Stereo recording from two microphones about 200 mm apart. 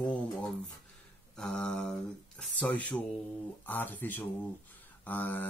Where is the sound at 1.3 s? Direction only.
5° left (ahead or behind).